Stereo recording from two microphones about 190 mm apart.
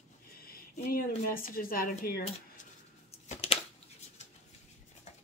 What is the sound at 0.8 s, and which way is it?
Speech, 50° left (ahead or behind).